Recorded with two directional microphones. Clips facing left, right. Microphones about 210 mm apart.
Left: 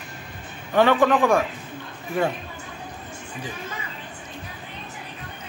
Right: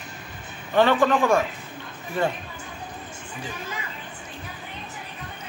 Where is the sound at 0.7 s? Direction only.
10° left (ahead or behind).